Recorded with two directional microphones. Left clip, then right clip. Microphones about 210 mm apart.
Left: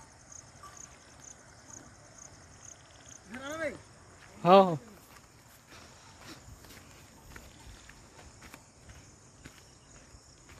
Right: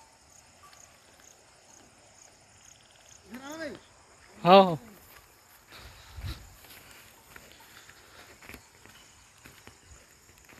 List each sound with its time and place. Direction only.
3.3 s a sound: 40° left (ahead or behind)
4.4 s speech: centre (ahead or behind)
5.7 s dog: 5° left (ahead or behind)